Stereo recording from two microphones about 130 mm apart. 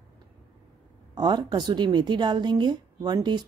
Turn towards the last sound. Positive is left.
turn(degrees=-35)  # may be behind; listen again after turning